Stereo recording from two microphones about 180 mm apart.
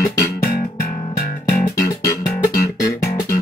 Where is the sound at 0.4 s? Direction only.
50° left (ahead or behind).